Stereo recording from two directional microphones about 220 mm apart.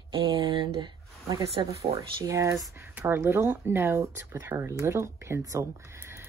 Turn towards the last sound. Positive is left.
turn(degrees=-10)  # may be behind; listen again after turning